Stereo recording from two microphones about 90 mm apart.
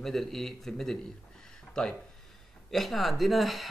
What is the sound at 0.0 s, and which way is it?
Speech, 5° left (ahead or behind).